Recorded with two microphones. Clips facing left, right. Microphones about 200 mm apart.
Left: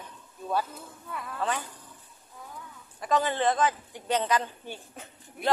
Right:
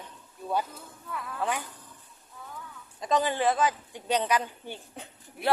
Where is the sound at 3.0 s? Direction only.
15° right (ahead or behind).